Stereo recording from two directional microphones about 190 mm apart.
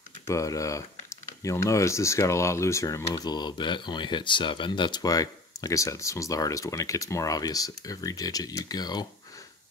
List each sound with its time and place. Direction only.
0.3 s speech: 15° left (ahead or behind)